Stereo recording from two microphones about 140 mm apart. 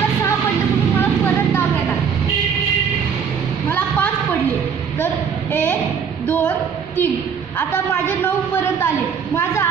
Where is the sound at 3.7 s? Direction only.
15° left (ahead or behind).